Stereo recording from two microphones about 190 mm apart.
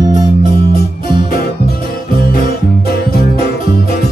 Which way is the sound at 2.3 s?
50° left (ahead or behind).